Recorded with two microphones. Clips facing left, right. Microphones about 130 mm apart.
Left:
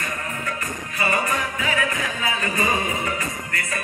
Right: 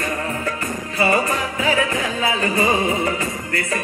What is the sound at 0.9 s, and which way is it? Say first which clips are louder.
Music: right 5 dB; 30° right (ahead or behind).